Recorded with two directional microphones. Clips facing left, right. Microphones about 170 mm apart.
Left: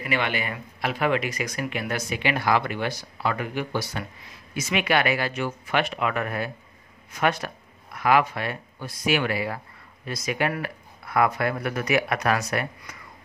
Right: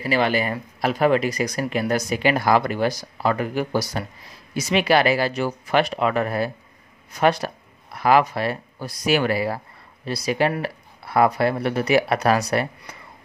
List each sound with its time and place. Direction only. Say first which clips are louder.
0.0 s speech: right 6 dB; 35° right (ahead or behind)